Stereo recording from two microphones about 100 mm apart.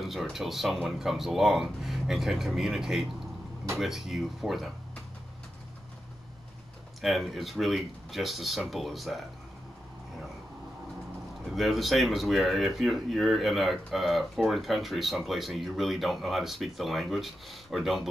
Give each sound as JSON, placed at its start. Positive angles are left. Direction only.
{"t": 0.0, "sound": "speech", "side_deg": 0}
{"t": 7.0, "sound": "speech", "side_deg": 0}
{"t": 11.5, "sound": "speech", "side_deg": 0}